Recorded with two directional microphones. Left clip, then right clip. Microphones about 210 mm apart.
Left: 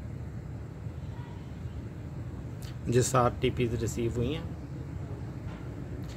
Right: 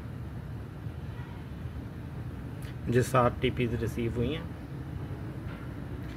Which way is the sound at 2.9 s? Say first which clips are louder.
Even; 15° left (ahead or behind).